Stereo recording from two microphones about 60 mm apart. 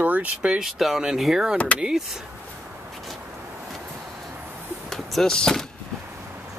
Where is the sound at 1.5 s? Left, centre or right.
Left.